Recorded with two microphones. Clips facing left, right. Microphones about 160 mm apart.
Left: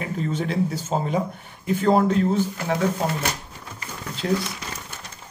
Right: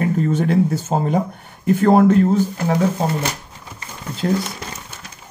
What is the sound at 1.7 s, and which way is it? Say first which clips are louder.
Speech: right 6 dB; 55° right (ahead or behind).